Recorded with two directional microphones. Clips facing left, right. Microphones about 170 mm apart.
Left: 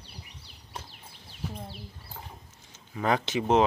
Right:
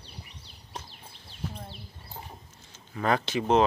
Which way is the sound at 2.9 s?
15° left (ahead or behind).